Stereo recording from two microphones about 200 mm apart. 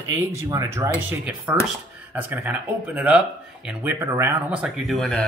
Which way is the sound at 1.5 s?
5° right (ahead or behind).